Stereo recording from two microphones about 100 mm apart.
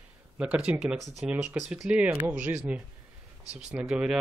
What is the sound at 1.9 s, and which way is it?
A man's voice, 10° right (ahead or behind).